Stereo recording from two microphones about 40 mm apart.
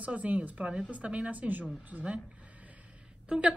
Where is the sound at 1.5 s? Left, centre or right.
Right.